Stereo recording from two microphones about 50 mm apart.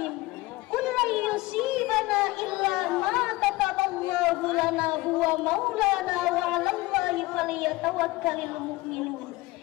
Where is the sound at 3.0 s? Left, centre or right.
Centre.